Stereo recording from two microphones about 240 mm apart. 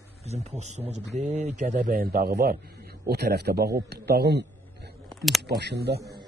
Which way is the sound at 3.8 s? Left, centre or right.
Right.